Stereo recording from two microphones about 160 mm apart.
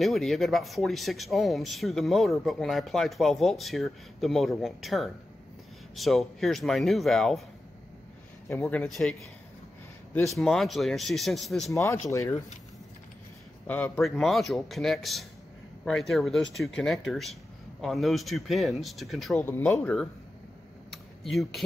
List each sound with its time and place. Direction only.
0.0 s speech: centre (ahead or behind)
8.5 s speech: 10° left (ahead or behind)
10.3 s speech: centre (ahead or behind)
11.7 s speech: 15° left (ahead or behind)
13.7 s speech: 10° left (ahead or behind)
19.4 s speech: 10° left (ahead or behind)
20.9 s computer keyboard: centre (ahead or behind)